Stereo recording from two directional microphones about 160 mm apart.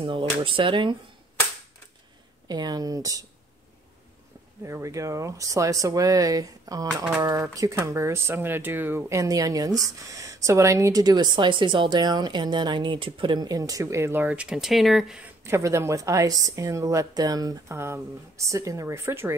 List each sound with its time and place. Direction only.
0.0 s speech: 35° right (ahead or behind)
2.4 s speech: 25° right (ahead or behind)
4.6 s speech: 20° right (ahead or behind); by 15.2 s centre (ahead or behind)
15.4 s speech: 15° right (ahead or behind)